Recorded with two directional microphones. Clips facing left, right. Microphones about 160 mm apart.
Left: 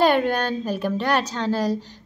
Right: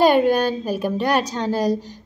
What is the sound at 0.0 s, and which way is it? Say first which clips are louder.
A woman's voice: right 4 dB; 10° right (ahead or behind).